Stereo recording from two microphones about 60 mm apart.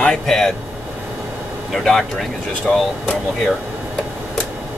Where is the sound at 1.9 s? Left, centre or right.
Centre.